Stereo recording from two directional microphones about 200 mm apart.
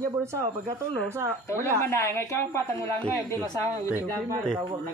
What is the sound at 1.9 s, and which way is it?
A woman's voice, 15° left (ahead or behind).